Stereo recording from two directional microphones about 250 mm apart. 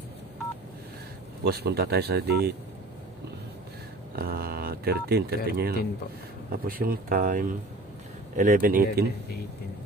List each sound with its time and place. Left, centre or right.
1.4 s speech: right
4.1 s speech: right